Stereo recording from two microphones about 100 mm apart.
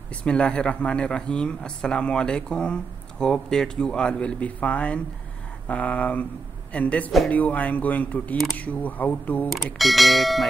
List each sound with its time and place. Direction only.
0.1 s speech: 10° left (ahead or behind)
9.8 s speech: centre (ahead or behind)